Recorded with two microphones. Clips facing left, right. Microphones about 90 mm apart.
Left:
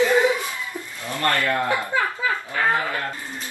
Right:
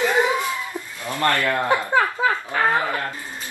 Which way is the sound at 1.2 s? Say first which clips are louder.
Right 1 dB; 20° right (ahead or behind).